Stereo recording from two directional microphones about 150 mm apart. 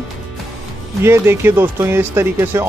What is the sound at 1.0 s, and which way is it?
Speech, 15° right (ahead or behind).